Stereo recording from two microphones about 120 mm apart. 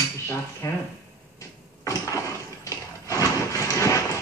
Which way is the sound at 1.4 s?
25° left (ahead or behind).